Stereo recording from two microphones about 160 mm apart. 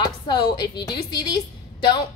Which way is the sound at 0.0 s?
25° left (ahead or behind).